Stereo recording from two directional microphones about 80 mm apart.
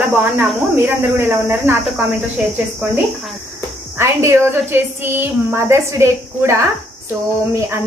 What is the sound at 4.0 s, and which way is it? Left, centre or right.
A woman's voice, right.